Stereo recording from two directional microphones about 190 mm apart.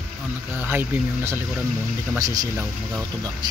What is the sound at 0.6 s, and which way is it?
Speech, 10° right (ahead or behind).